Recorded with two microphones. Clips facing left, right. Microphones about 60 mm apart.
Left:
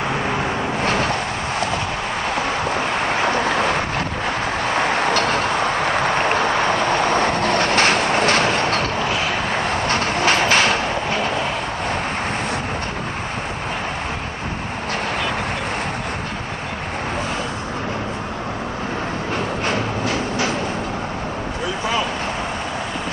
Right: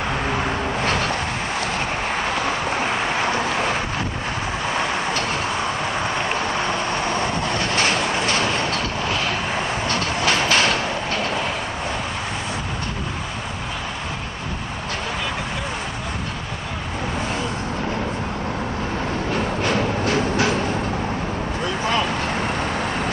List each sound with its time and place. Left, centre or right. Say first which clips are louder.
3.3 s vehicle: left 3 dB; left
4.7 s vehicle: left 6 dB; left
9.8 s train: left 3 dB; left
10.7 s a sound: left 2 dB; left